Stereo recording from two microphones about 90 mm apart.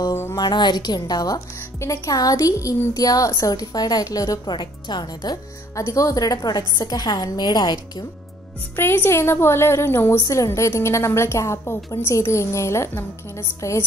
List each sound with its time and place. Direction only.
0.1 s a sound: 30° left (ahead or behind)
0.4 s a woman's voice: 55° left (ahead or behind)
8.7 s a woman's voice: 25° left (ahead or behind)